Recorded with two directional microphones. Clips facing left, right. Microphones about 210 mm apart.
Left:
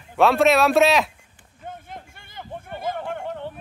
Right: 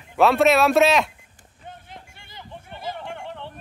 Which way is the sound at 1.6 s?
50° left (ahead or behind).